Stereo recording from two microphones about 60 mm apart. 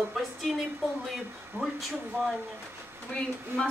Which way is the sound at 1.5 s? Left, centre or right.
Right.